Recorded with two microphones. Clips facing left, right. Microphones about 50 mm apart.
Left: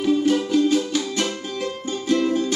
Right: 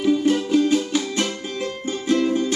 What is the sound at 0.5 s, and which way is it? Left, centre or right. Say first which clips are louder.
Music: right 1 dB; centre.